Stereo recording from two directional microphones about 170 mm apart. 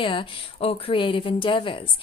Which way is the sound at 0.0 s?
30° left (ahead or behind).